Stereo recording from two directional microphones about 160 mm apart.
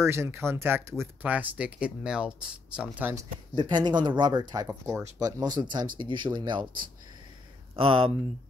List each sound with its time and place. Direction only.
0.0 s speech: 15° right (ahead or behind)
3.5 s speech: 30° right (ahead or behind)
7.7 s speech: 35° right (ahead or behind)